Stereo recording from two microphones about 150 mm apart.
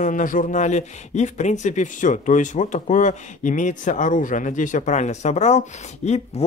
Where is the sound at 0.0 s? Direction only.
60° left (ahead or behind).